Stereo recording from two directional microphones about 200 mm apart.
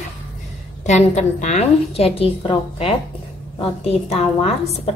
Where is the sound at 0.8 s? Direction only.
35° left (ahead or behind).